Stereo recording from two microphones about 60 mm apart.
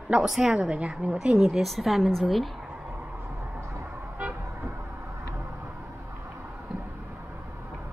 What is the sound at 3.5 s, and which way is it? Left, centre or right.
Vehicle, right.